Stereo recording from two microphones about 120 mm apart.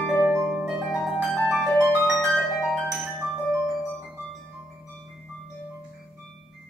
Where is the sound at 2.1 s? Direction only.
5° left (ahead or behind).